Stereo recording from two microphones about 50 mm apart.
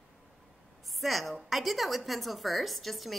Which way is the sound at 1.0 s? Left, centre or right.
Centre.